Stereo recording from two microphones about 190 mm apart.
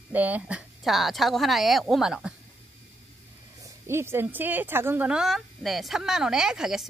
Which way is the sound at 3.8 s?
15° right (ahead or behind).